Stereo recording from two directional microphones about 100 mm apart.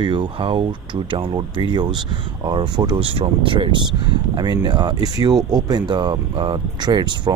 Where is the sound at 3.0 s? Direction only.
65° right (ahead or behind).